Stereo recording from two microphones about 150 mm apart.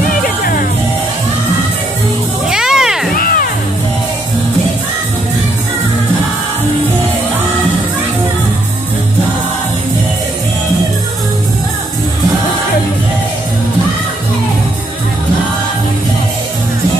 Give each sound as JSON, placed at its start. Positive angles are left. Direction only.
{"t": 2.4, "sound": "music", "side_deg": -5}
{"t": 3.2, "sound": "music", "side_deg": 75}